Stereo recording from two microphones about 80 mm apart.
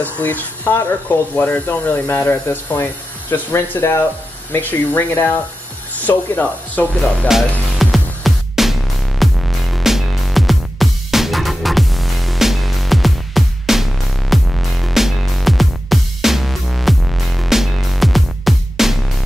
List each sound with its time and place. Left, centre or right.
0.0 s speech: left
7.8 s music: centre